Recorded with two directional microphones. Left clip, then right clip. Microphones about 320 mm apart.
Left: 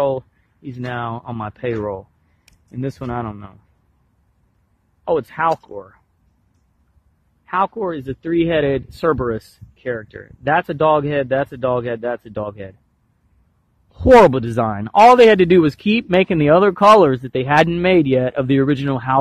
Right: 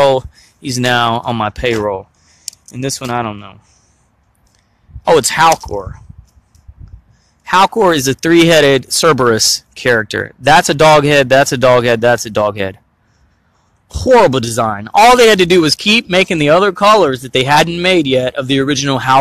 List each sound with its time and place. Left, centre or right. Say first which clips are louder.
0.0 s speech: right 9 dB; centre
5.0 s speech: right 9 dB; centre
7.4 s speech: right 10 dB; centre
14.0 s speech: right 1 dB; centre